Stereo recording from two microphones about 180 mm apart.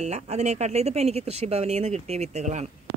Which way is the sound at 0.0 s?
40° right (ahead or behind).